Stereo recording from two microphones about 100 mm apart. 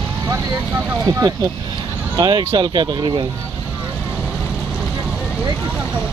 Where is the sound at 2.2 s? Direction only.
45° right (ahead or behind).